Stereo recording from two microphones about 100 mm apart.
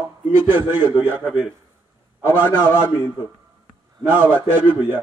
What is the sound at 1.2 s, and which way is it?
Speech, 10° right (ahead or behind).